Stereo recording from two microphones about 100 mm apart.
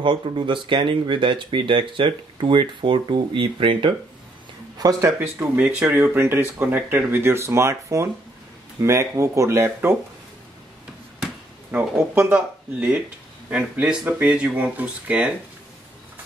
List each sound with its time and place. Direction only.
0.0 s speech: 55° right (ahead or behind)
4.7 s speech: 40° right (ahead or behind)
5.6 s speech: 15° right (ahead or behind)
11.7 s speech: 15° right (ahead or behind)